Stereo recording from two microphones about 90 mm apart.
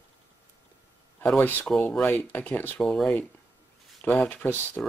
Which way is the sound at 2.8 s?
5° left (ahead or behind).